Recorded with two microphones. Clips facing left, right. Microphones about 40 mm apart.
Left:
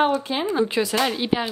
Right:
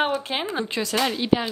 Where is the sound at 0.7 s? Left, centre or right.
Centre.